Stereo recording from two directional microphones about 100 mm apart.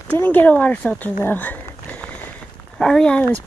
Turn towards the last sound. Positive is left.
turn(degrees=10)  # may be behind; listen again after turning